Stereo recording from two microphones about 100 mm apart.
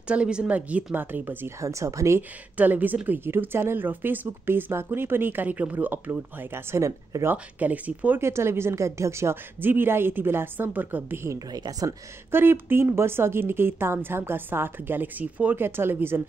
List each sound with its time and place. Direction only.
0.1 s speech: 10° right (ahead or behind); by 2.2 s 30° right (ahead or behind)
2.5 s speech: 15° right (ahead or behind)
7.5 s speech: 15° right (ahead or behind)
11.2 s a woman's voice: 40° right (ahead or behind)
12.3 s speech: 20° right (ahead or behind)